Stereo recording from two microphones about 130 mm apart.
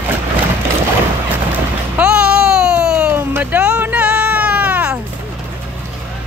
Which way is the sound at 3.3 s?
10° right (ahead or behind).